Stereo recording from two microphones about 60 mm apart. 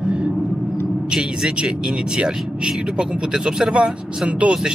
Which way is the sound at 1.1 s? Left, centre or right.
Centre.